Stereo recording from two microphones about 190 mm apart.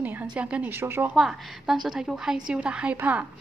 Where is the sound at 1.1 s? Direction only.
Centre (ahead or behind).